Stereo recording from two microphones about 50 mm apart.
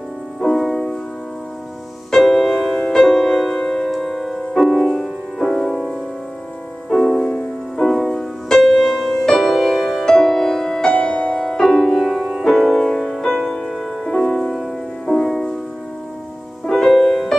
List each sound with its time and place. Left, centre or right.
0.4 s music: centre
2.0 s music: centre
7.2 s music: centre
7.8 s music: centre
8.1 s music: centre
12.2 s music: centre
12.4 s music: centre
16.6 s music: centre